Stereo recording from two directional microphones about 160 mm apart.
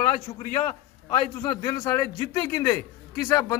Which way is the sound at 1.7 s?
15° left (ahead or behind).